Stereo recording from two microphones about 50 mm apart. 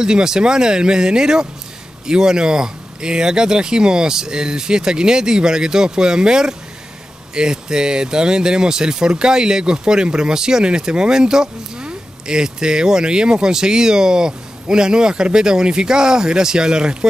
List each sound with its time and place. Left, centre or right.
0.0 s speech: centre